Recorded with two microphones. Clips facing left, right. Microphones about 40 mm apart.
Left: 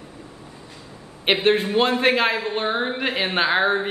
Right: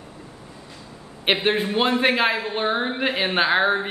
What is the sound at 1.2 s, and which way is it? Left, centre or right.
A man's voice, centre.